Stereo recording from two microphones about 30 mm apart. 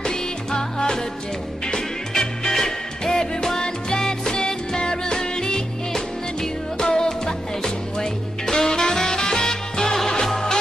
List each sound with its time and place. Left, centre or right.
0.0 s music: left